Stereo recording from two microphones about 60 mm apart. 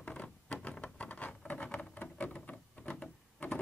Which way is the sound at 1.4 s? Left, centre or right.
Left.